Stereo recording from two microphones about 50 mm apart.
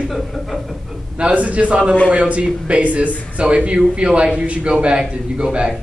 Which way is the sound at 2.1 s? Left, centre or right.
Right.